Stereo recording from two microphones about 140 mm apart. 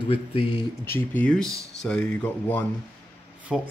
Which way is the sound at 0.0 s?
40° left (ahead or behind).